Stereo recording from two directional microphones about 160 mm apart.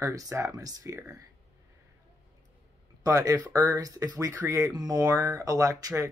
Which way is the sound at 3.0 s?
20° right (ahead or behind).